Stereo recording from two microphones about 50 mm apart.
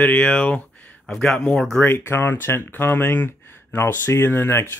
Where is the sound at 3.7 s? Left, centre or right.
Left.